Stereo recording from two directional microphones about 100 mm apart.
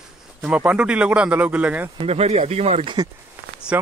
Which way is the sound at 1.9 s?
90° right.